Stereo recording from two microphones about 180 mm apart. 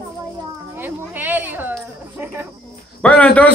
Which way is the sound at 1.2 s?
10° right (ahead or behind).